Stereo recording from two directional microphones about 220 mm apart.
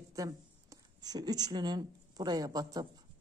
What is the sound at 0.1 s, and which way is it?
A woman's voice, 15° right (ahead or behind).